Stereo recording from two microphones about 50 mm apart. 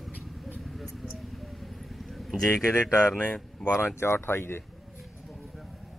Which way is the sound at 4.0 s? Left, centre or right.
Left.